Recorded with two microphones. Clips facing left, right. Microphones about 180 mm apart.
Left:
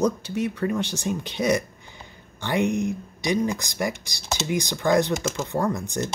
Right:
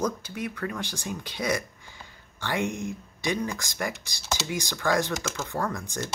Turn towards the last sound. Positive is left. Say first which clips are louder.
# left 5 dB
turn(degrees=20)  # may be behind; listen again after turning